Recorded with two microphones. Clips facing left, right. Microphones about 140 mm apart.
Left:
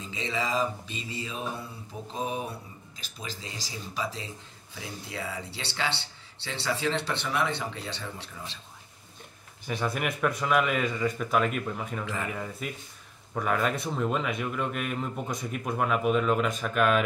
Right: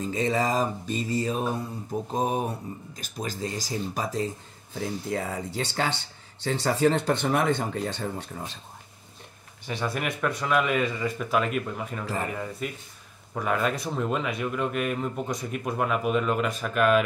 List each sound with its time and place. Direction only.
0.0 s mantra: 45° right (ahead or behind)
9.7 s speech: centre (ahead or behind)